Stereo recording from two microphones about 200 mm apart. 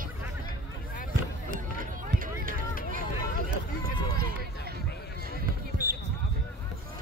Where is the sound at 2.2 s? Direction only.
45° right (ahead or behind).